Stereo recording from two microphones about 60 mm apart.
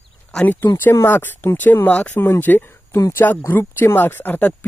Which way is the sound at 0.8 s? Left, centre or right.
Left.